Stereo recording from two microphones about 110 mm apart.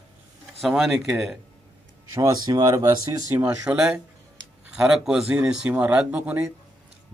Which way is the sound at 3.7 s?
10° right (ahead or behind).